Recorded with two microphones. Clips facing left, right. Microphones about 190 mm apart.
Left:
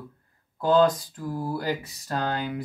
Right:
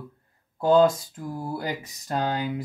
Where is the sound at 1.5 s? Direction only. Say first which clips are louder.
Left 2 dB; 15° right (ahead or behind).